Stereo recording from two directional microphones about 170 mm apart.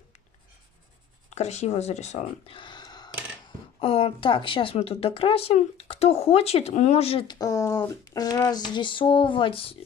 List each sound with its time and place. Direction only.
1.3 s speech: 40° left (ahead or behind)